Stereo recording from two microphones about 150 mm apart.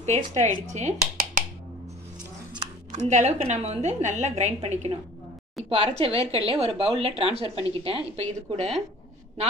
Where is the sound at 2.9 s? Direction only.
50° right (ahead or behind).